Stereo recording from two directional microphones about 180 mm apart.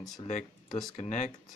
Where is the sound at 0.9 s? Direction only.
40° left (ahead or behind).